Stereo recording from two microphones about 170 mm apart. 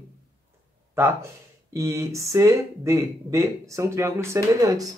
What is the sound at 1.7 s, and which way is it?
Speech, 15° right (ahead or behind).